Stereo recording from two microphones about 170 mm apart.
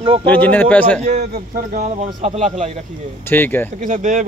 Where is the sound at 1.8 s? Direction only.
40° right (ahead or behind).